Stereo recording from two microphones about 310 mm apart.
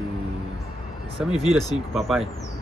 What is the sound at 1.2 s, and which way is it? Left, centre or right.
Speech, centre.